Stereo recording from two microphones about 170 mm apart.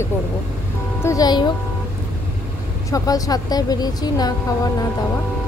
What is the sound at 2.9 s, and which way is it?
Speech, 20° left (ahead or behind).